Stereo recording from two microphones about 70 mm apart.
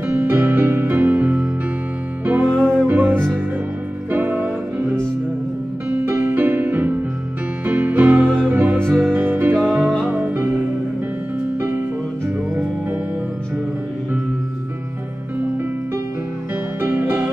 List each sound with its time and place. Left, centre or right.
0.1 s music: right
2.5 s music: centre
2.9 s music: right
16.8 s music: right